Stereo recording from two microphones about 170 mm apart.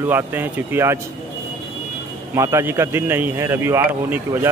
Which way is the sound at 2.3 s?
15° right (ahead or behind).